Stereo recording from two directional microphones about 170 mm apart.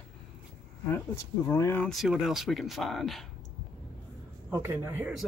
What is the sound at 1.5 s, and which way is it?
Speech, 15° left (ahead or behind).